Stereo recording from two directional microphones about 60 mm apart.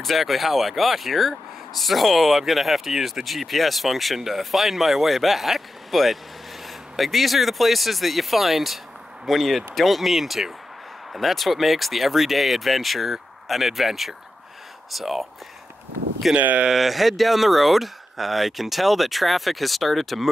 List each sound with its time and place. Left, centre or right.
0.0 s speech: centre
16.3 s speech: right
16.6 s speech: centre